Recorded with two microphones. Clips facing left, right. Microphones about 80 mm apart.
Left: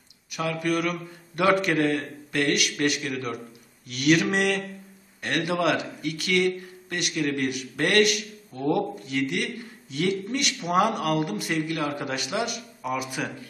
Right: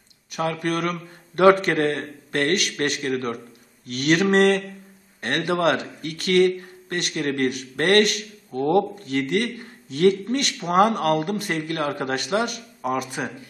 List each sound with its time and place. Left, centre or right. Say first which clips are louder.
0.3 s a man's voice: right 2 dB; right